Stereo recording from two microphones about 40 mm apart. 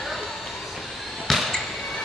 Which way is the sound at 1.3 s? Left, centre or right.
Centre.